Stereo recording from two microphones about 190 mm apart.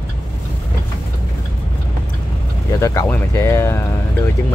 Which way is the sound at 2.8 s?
15° left (ahead or behind).